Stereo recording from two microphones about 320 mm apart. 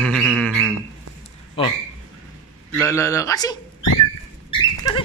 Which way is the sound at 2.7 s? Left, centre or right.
Centre.